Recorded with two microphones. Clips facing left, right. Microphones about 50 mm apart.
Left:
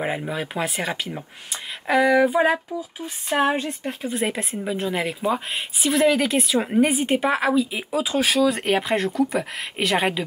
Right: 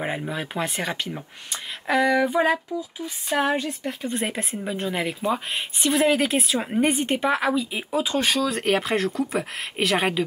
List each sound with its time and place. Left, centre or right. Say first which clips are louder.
0.0 s speech: left 2 dB; centre
2.4 s speech: left 1 dB; left
4.0 s speech: left 3 dB; centre